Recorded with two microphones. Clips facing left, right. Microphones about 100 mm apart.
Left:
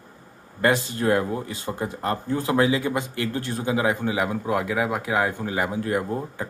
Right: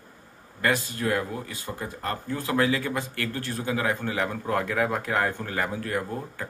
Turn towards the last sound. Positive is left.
turn(degrees=20)  # may be behind; listen again after turning